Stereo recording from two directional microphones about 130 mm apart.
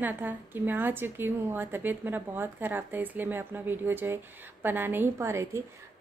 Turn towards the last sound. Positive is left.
turn(degrees=-20)  # may be behind; listen again after turning